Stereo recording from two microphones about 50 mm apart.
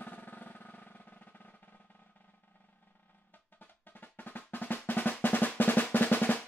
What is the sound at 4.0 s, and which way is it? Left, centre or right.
Drum, left.